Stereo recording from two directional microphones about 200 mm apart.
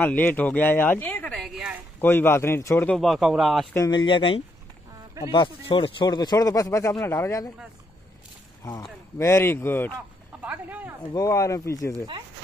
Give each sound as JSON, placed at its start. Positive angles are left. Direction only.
{"t": 0.0, "sound": "speech", "side_deg": 10}
{"t": 2.0, "sound": "speech", "side_deg": 10}
{"t": 3.7, "sound": "a man's voice", "side_deg": 20}
{"t": 8.6, "sound": "speech", "side_deg": 15}
{"t": 10.4, "sound": "a sound", "side_deg": -10}
{"t": 11.1, "sound": "speech", "side_deg": 15}